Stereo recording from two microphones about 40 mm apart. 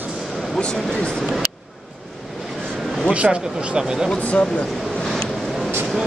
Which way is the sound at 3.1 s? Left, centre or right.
Right.